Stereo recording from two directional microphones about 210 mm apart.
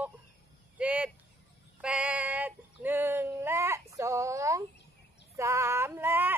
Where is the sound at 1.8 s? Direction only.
5° right (ahead or behind).